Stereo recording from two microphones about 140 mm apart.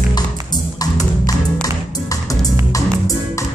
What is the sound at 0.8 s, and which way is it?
Music, 25° left (ahead or behind).